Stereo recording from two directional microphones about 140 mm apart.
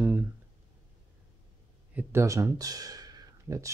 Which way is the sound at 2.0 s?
20° right (ahead or behind).